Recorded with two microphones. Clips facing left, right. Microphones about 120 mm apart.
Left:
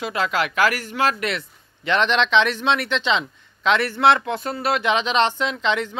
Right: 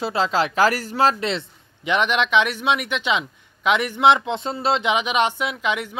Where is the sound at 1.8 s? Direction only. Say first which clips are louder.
Left 1 dB; 10° right (ahead or behind).